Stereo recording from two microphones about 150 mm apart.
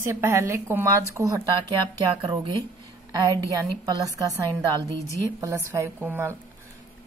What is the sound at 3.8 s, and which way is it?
Speech, 25° right (ahead or behind).